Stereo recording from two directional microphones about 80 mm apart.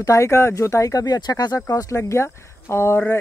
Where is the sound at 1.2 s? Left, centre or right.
Left.